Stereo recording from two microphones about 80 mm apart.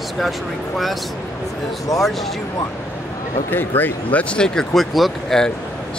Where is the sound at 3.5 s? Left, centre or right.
Left.